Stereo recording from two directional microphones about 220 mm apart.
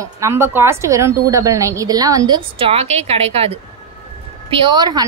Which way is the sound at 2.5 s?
25° right (ahead or behind).